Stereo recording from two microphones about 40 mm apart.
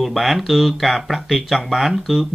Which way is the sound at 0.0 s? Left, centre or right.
Centre.